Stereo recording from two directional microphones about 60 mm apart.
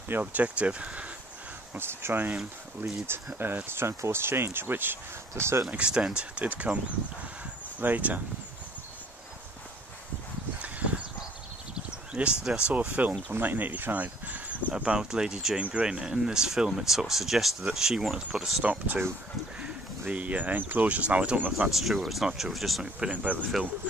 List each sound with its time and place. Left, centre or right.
0.1 s speech: right
1.7 s speech: right
5.3 s speech: right
5.7 s speech: centre
7.8 s speech: right
10.6 s a sound: right
12.1 s speech: centre
14.8 s speech: centre
18.6 s speech: right
21.6 s speech: centre
22.9 s speech: right